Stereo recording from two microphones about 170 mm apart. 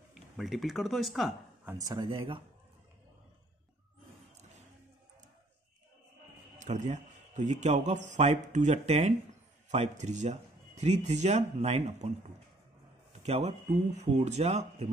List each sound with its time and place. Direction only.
0.1 s speech: centre (ahead or behind)
1.6 s speech: 10° right (ahead or behind)
1.9 s speech: 30° right (ahead or behind)
4.4 s music: 40° right (ahead or behind)
6.6 s speech: 45° right (ahead or behind)
13.2 s speech: 40° right (ahead or behind)